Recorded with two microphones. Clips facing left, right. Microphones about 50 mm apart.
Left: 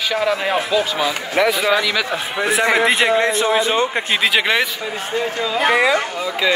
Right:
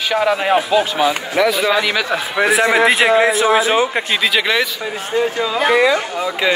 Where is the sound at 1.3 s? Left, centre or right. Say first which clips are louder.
Even; left.